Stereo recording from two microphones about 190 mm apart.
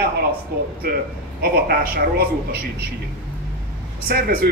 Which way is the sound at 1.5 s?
50° right (ahead or behind).